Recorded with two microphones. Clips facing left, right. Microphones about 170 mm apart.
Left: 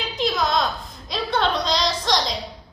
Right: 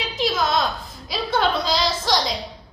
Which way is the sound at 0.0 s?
Centre (ahead or behind).